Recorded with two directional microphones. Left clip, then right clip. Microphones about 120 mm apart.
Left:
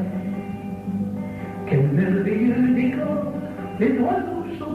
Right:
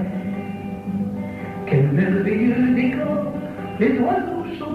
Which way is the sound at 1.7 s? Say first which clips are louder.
Right 2 dB; 35° left (ahead or behind).